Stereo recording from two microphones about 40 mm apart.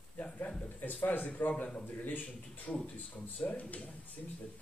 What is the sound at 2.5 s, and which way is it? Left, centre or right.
A man's voice, left.